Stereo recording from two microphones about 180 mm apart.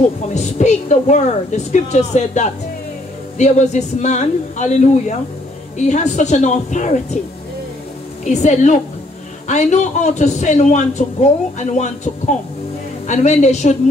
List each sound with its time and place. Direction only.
0.3 s a man's voice: 40° left (ahead or behind)
8.3 s a man's voice: 40° left (ahead or behind)